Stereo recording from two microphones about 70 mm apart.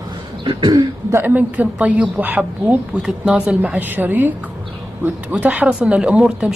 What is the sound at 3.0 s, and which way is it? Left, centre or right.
Speech, centre.